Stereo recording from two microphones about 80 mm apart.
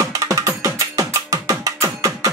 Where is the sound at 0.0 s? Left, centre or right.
Right.